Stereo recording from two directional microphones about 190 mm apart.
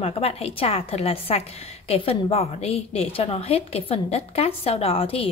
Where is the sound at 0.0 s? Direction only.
30° left (ahead or behind).